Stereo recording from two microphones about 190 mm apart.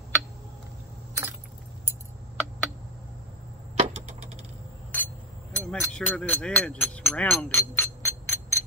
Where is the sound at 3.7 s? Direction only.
35° right (ahead or behind).